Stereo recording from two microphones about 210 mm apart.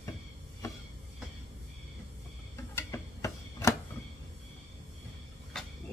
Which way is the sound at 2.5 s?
10° left (ahead or behind).